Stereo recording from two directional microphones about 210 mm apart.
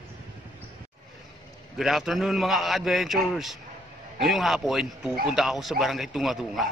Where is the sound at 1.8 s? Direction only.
Centre (ahead or behind).